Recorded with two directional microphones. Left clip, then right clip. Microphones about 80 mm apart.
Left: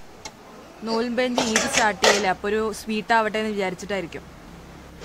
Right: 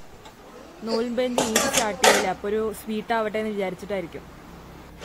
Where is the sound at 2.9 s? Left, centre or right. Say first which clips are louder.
Left 7 dB; left.